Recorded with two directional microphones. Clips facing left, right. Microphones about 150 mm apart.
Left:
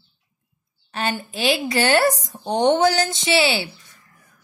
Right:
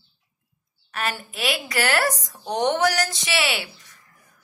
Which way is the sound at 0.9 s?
25° left (ahead or behind).